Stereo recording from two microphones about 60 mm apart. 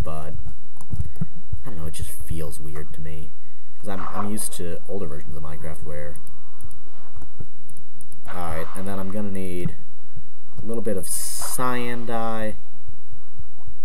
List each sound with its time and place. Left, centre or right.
0.0 s speech: centre
0.8 s computer keyboard: right
1.1 s a sound: centre
3.8 s speech: centre
8.2 s speech: centre